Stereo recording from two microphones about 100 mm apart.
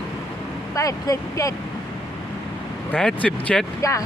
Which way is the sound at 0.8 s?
35° left (ahead or behind).